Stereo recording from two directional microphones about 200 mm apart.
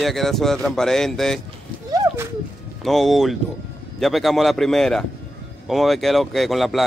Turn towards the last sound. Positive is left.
turn(degrees=0)  # may be behind; listen again after turning